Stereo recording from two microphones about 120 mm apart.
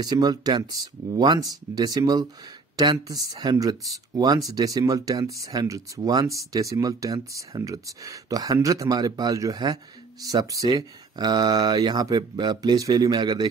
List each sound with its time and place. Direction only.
0.0 s speech: 35° right (ahead or behind)